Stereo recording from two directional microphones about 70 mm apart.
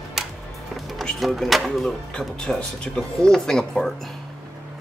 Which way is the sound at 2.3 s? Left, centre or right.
Centre.